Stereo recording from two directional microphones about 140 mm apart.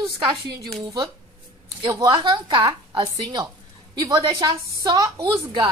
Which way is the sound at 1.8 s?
30° right (ahead or behind).